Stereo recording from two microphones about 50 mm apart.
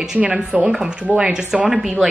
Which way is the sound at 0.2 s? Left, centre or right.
Right.